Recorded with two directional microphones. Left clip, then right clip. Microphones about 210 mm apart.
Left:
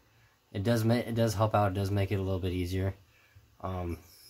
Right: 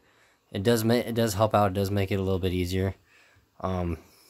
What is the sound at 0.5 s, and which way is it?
Speech, 35° right (ahead or behind).